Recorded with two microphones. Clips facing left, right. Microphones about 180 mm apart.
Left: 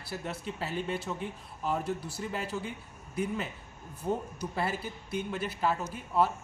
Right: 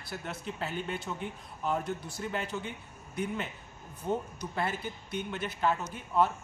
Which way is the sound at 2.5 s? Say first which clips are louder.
Left 1 dB; 35° left (ahead or behind).